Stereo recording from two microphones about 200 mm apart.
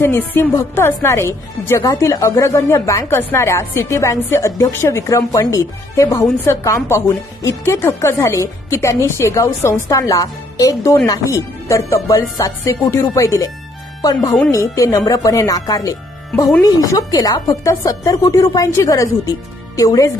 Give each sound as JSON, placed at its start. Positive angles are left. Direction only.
{"t": 0.0, "sound": "a woman's voice", "side_deg": 10}